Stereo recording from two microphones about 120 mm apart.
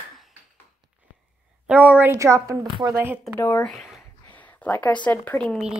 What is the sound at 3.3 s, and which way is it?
Speech, 15° left (ahead or behind).